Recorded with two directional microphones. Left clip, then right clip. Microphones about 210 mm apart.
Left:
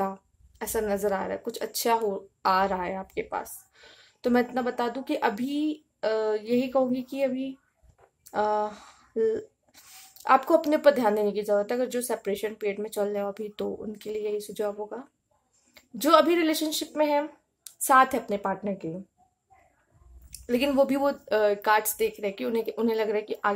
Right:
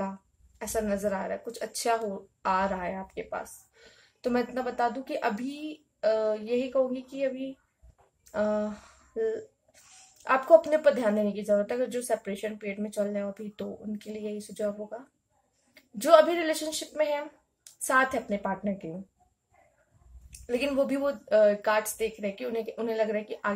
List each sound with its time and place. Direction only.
0.6 s a woman's voice: 40° left (ahead or behind)
20.2 s a woman's voice: 45° left (ahead or behind)